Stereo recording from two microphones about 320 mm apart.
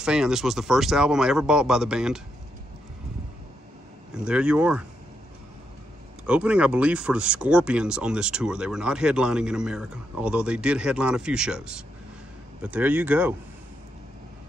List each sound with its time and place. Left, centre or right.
0.0 s speech: centre
4.1 s speech: centre
6.2 s speech: centre